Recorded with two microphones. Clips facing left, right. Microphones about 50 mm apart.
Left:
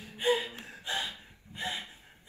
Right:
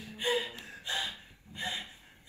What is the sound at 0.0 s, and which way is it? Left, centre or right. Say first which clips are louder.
Gasp: left 3 dB; left.